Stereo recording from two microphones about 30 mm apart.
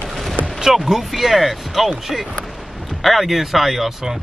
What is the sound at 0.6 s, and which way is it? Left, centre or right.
Speech, centre.